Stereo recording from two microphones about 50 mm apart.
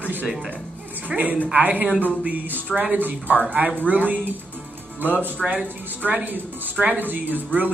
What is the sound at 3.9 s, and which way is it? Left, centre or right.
Speech, right.